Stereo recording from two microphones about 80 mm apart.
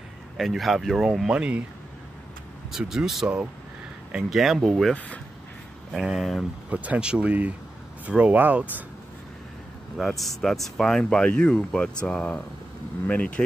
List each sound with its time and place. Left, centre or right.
0.4 s speech: centre
2.7 s speech: centre
5.9 s speech: centre
6.7 s speech: centre
9.9 s speech: centre